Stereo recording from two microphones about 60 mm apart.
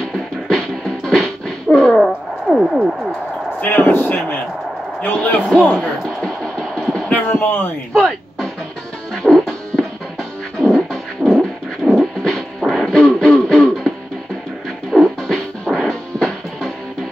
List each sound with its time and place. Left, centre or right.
0.0 s music: centre
2.5 s a sound: centre
3.6 s a man's voice: left
5.8 s a sound: centre
7.1 s a sound: left
7.9 s music: centre
10.6 s beatboxing: centre
11.3 s music: centre
14.9 s music: centre
15.2 s music: centre